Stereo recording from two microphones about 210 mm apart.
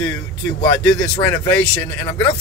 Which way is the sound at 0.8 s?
5° left (ahead or behind).